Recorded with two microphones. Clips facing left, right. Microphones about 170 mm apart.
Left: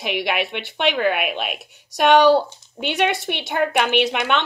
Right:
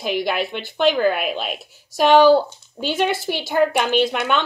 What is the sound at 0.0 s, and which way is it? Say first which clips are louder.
Speech: right 1 dB; 60° left (ahead or behind).